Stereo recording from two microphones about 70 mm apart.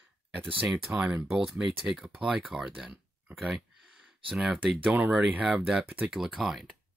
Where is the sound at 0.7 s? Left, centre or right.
Centre.